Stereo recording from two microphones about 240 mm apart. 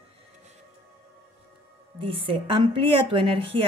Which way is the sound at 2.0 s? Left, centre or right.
Right.